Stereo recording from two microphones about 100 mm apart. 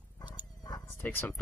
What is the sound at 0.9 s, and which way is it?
Speech, 20° left (ahead or behind).